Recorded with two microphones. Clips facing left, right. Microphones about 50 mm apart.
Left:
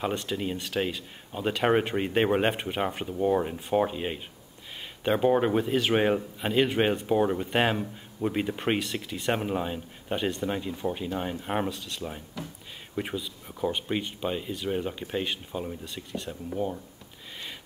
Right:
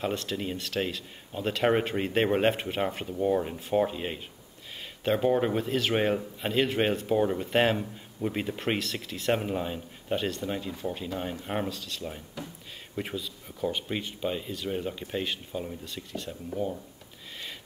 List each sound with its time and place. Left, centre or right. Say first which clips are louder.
0.0 s speech: left 1 dB; centre
16.5 s speech: left 1 dB; centre